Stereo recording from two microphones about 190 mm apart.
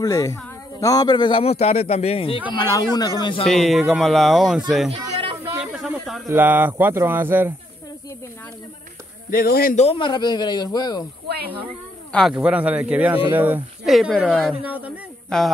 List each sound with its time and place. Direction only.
0.0 s speech: 20° left (ahead or behind)
3.4 s speech: centre (ahead or behind)
4.9 s a sound: 30° right (ahead or behind)
5.5 s snake: 5° right (ahead or behind)
6.2 s speech: 10° right (ahead or behind)
9.3 s speech: 50° left (ahead or behind)
9.8 s speech: 25° left (ahead or behind)
11.2 s snake: 55° right (ahead or behind)
12.1 s speech: centre (ahead or behind)
14.5 s a man's voice: 10° right (ahead or behind)